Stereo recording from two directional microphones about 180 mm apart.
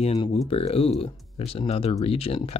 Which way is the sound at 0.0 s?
35° left (ahead or behind).